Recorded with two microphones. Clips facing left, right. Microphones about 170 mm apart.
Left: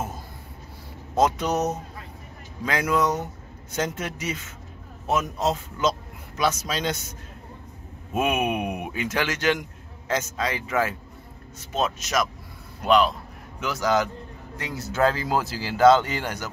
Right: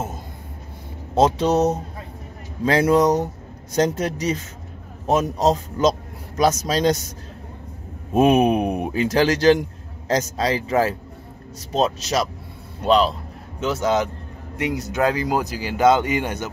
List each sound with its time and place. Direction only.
1.1 s a man's voice: 30° right (ahead or behind)
8.1 s a man's voice: 35° right (ahead or behind); by 16.4 s 20° right (ahead or behind)